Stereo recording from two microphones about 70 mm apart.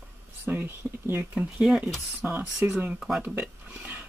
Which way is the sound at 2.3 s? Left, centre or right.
Right.